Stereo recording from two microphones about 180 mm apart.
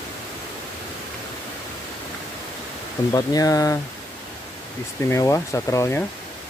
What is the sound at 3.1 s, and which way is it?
Speech, 20° left (ahead or behind).